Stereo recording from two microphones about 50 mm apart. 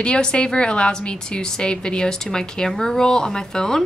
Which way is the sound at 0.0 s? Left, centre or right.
Centre.